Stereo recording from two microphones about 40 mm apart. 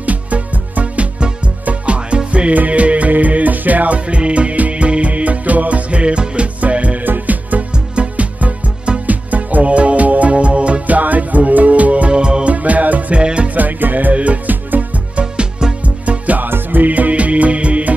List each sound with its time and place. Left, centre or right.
0.0 s music: right
7.0 s music: right
7.9 s music: right
12.1 s music: right
12.5 s music: right
13.2 s music: right
13.6 s music: right
14.1 s music: right
16.4 s music: right